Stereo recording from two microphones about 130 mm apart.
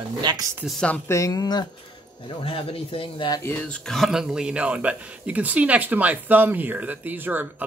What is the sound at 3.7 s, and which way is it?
Speech, centre (ahead or behind).